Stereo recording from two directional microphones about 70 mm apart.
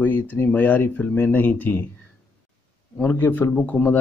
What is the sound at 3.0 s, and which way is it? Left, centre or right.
Speech, left.